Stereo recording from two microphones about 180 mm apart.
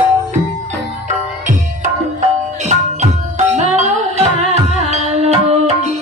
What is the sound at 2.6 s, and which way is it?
Music, 40° right (ahead or behind).